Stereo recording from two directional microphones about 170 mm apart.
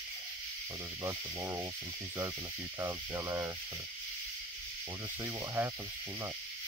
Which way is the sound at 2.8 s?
20° right (ahead or behind).